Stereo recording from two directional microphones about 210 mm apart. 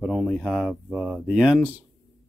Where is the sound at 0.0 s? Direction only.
Centre (ahead or behind).